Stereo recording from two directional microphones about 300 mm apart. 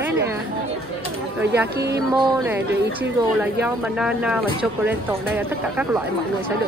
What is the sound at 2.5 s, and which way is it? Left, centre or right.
Speech, centre.